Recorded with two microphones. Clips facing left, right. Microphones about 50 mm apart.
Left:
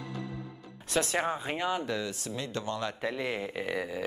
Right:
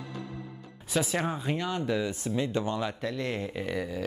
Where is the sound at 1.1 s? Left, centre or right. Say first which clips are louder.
Right 1 dB; centre.